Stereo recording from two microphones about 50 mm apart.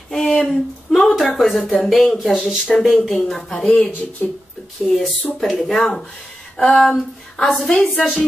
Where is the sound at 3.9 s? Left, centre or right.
Left.